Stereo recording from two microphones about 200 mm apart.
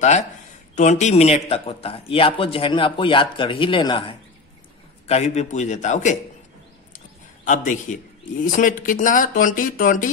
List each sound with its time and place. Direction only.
0.7 s speech: 35° left (ahead or behind)
7.4 s speech: 40° left (ahead or behind)